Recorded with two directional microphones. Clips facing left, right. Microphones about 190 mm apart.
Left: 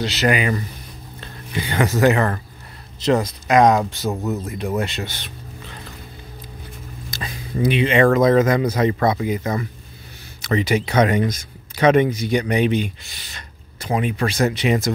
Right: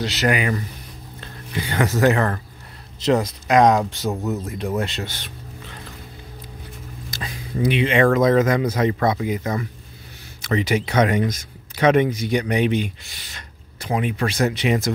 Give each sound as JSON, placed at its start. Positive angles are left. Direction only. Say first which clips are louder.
{"t": 0.0, "sound": "speech", "louder": "left 2 dB", "side_deg": 25}
{"t": 7.1, "sound": "speech", "louder": "left 1 dB", "side_deg": 35}